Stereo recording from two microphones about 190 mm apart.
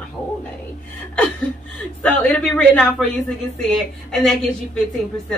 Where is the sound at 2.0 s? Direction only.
5° left (ahead or behind).